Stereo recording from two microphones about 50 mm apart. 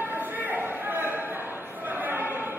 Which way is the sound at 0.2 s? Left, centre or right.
Right.